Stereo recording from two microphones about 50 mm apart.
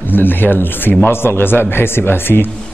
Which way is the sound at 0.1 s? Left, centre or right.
Left.